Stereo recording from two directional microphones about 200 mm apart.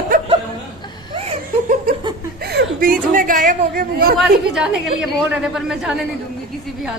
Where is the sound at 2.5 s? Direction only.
45° right (ahead or behind).